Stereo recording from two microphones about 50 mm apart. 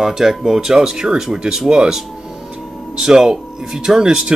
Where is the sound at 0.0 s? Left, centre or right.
Centre.